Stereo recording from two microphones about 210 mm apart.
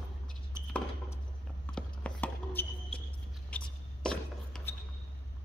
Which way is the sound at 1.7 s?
5° left (ahead or behind).